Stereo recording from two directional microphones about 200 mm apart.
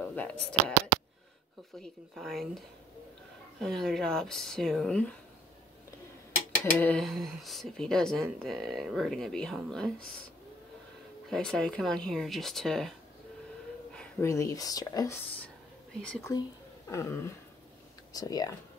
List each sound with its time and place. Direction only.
0.0 s speech: 10° left (ahead or behind)
1.8 s speech: centre (ahead or behind)
6.6 s speech: 10° left (ahead or behind)
11.2 s speech: 5° left (ahead or behind)
13.9 s speech: 15° left (ahead or behind)
16.0 s speech: 5° left (ahead or behind)
16.9 s a sound: 15° left (ahead or behind)
18.1 s speech: 20° left (ahead or behind)